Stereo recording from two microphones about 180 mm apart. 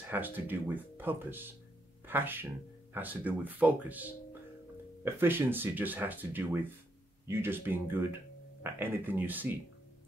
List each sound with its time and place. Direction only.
0.1 s speech: 10° right (ahead or behind)